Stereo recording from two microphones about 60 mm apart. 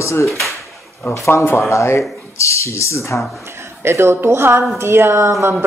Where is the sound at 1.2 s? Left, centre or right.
Left.